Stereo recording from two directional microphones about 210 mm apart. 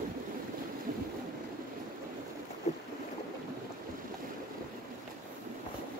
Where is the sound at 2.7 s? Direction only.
35° left (ahead or behind).